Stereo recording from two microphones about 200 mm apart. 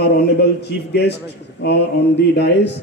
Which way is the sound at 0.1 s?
55° left (ahead or behind).